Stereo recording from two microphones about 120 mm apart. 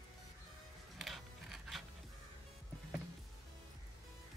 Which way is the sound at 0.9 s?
Centre (ahead or behind).